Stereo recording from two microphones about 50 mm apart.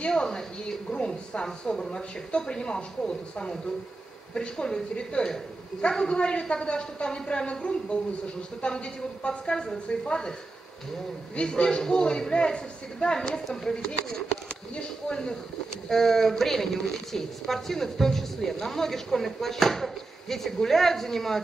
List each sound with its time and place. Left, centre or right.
0.0 s a man's voice: centre
11.3 s a man's voice: centre